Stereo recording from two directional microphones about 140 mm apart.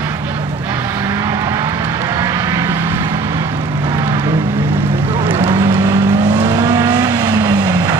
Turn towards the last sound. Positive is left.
turn(degrees=-25)  # may be behind; listen again after turning